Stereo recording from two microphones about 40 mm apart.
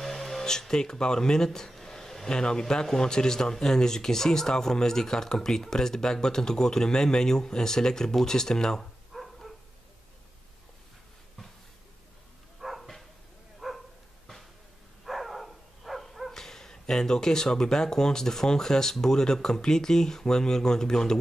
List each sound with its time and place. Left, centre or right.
0.0 s speech: centre
9.1 s dog: centre
12.5 s dog: centre
15.0 s a sound: centre
16.3 s speech: centre